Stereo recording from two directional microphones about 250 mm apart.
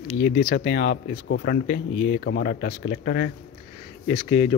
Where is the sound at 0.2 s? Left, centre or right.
Left.